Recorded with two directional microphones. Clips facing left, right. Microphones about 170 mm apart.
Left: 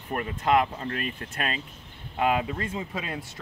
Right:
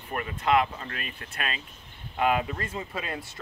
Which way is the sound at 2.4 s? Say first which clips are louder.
Left 2 dB; 15° left (ahead or behind).